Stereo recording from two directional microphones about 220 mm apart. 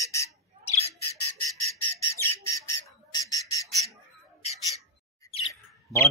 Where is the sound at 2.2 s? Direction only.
15° left (ahead or behind).